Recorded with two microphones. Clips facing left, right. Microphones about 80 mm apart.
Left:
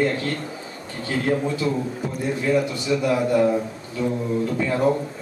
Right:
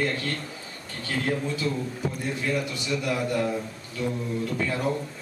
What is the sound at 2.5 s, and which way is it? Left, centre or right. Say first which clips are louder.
A man's voice: left 8 dB; centre.